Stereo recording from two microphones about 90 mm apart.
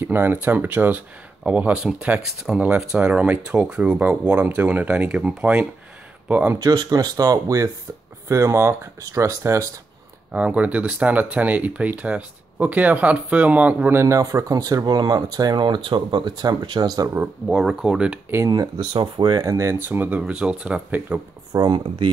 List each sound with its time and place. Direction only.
0.0 s speech: 25° right (ahead or behind)
6.6 s speech: 45° right (ahead or behind)
10.3 s speech: 15° right (ahead or behind)
13.9 s speech: 35° right (ahead or behind)
17.1 s speech: 20° right (ahead or behind)
17.6 s speech: 10° right (ahead or behind)
18.9 s speech: 60° right (ahead or behind)
19.4 s speech: 35° right (ahead or behind); by 21.2 s 15° right (ahead or behind)
21.5 s speech: 50° right (ahead or behind); by 22.1 s 65° right (ahead or behind)